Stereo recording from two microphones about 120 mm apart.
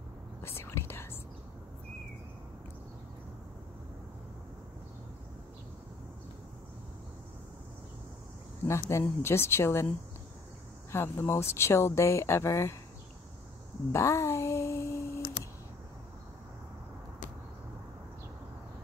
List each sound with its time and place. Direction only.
0.4 s whispering: 20° left (ahead or behind)
8.6 s speech: 20° left (ahead or behind)
10.9 s speech: 20° left (ahead or behind)
13.9 s a sound: 25° left (ahead or behind)